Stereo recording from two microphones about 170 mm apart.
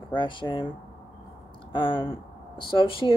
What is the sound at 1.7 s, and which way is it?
Speech, 30° left (ahead or behind).